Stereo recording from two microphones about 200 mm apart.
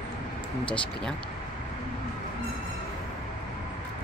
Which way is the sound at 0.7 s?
5° left (ahead or behind).